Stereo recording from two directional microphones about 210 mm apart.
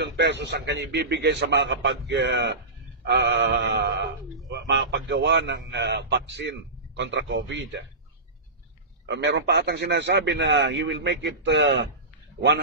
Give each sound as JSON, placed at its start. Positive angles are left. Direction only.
{"t": 0.0, "sound": "a man's voice", "side_deg": -55}
{"t": 9.0, "sound": "a man's voice", "side_deg": -55}